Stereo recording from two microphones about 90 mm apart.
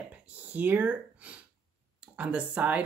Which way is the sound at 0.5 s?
20° right (ahead or behind).